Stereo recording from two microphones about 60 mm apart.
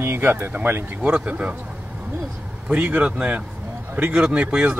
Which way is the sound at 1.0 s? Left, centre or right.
Right.